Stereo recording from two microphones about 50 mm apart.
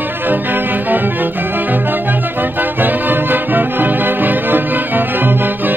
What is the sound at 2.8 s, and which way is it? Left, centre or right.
Music, right.